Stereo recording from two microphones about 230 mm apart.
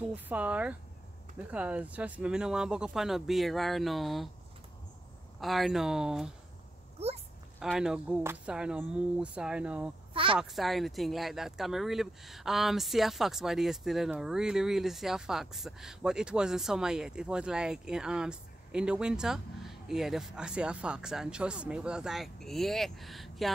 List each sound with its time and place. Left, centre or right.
0.1 s speech: centre
5.4 s speech: centre
7.6 s speech: centre
10.1 s speech: right
10.4 s speech: centre